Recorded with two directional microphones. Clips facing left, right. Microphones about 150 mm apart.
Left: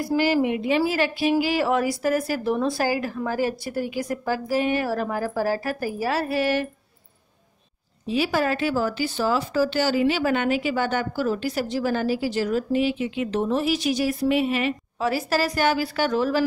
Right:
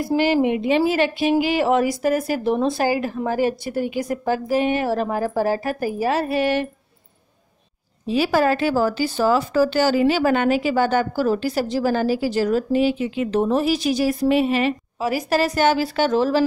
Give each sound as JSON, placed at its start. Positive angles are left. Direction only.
{"t": 0.0, "sound": "a woman's voice", "side_deg": -25}
{"t": 8.1, "sound": "speech", "side_deg": -40}
{"t": 15.0, "sound": "a woman's voice", "side_deg": -15}